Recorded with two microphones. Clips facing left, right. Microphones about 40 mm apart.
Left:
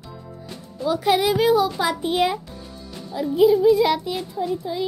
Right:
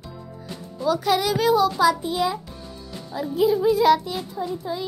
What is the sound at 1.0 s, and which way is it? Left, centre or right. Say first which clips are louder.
Speech: left 6 dB; left.